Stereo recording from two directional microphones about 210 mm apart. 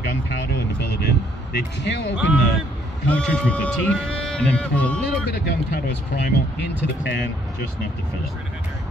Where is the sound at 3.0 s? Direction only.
5° left (ahead or behind).